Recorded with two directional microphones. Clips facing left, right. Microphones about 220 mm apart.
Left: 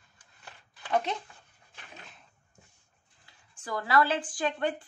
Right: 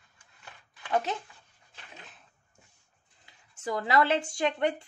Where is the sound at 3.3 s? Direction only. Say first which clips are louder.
Right 4 dB; 20° right (ahead or behind).